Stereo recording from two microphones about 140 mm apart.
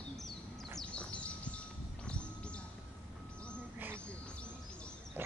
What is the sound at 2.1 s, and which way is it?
Music, 10° left (ahead or behind).